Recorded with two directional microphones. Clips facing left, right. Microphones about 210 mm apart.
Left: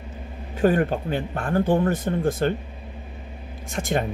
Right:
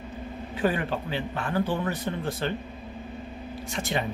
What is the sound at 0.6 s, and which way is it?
Speech, 45° left (ahead or behind).